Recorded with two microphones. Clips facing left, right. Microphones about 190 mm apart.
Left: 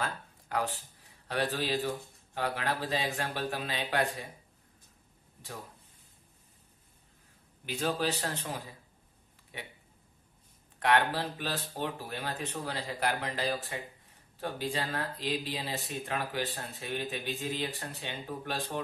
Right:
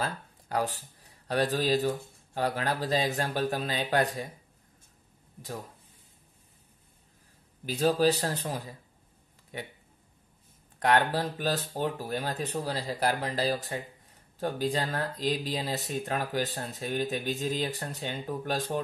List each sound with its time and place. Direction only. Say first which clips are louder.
0.0 s speech: right 3 dB; 35° right (ahead or behind)
7.6 s speech: right 7 dB; 35° right (ahead or behind)
10.8 s speech: right 2 dB; 40° right (ahead or behind)